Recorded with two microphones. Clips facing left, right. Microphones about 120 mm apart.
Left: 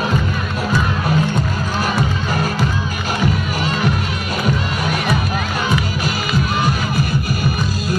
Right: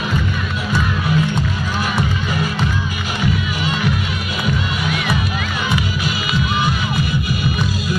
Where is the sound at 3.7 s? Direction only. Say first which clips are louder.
Left 1 dB; 45° left (ahead or behind).